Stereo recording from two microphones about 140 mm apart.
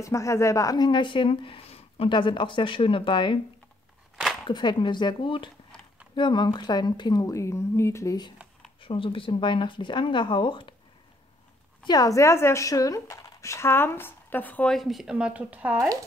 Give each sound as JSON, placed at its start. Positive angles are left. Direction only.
{"t": 0.0, "sound": "speech", "side_deg": 20}
{"t": 4.5, "sound": "a woman's voice", "side_deg": 35}
{"t": 8.8, "sound": "speech", "side_deg": 40}
{"t": 11.8, "sound": "speech", "side_deg": 25}